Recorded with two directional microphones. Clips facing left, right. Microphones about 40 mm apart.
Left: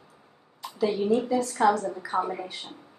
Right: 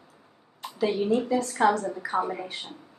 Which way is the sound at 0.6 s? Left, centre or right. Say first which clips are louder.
Even; right.